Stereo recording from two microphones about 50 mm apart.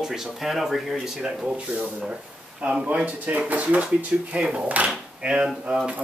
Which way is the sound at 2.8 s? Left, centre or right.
Right.